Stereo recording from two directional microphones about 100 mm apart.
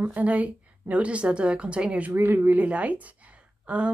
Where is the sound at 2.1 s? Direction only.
20° right (ahead or behind).